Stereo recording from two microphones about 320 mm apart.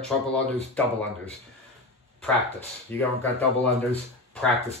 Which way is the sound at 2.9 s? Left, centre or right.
Centre.